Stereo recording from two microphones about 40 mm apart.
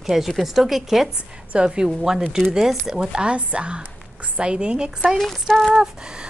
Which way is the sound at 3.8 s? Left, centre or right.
Right.